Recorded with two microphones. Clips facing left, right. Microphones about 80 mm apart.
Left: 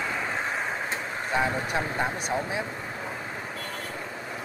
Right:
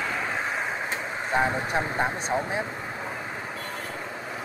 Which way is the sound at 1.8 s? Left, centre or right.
Centre.